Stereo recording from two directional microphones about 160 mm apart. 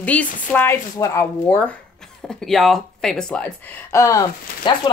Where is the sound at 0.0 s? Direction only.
10° left (ahead or behind).